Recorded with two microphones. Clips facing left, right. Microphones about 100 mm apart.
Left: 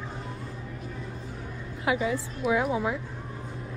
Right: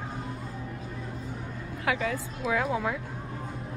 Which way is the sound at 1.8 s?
20° left (ahead or behind).